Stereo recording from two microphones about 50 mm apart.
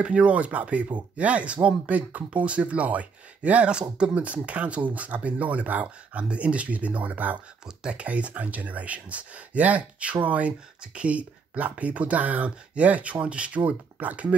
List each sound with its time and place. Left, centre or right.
0.0 s speech: right
7.6 s speech: centre